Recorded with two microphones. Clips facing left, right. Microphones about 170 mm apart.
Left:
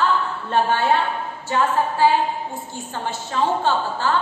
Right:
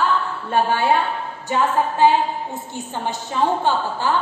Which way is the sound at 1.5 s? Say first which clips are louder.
Right 1 dB; 20° right (ahead or behind).